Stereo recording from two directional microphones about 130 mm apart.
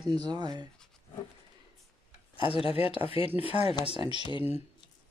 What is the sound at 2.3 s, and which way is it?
Speech, 45° left (ahead or behind).